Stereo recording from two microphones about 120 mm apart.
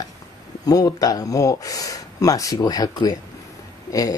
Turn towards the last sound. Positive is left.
turn(degrees=30)  # may be behind; listen again after turning